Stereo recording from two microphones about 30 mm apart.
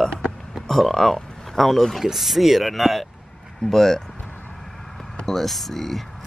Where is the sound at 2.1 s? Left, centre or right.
Centre.